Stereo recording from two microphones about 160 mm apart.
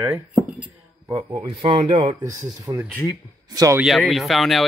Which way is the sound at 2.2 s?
20° right (ahead or behind).